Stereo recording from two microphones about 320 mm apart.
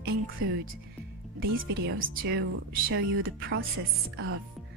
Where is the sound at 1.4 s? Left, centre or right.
Right.